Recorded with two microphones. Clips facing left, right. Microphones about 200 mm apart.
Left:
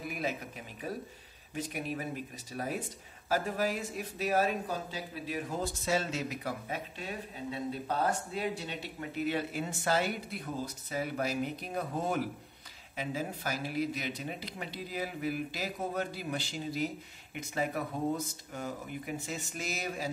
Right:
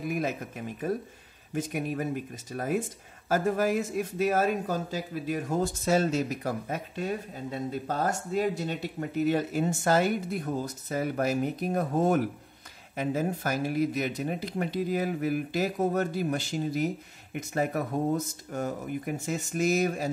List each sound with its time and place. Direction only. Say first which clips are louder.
0.1 s speech: right 5 dB; 45° right (ahead or behind)